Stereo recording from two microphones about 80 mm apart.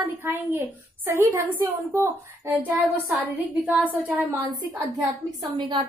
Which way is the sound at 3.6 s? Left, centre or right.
Right.